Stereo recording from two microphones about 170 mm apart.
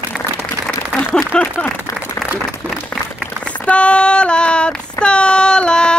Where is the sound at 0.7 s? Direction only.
10° left (ahead or behind).